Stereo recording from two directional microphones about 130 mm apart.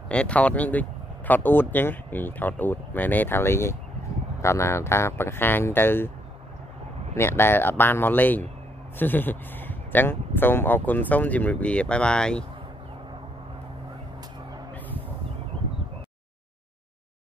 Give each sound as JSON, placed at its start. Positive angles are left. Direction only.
{"t": 0.1, "sound": "speech", "side_deg": 10}
{"t": 7.2, "sound": "speech", "side_deg": 20}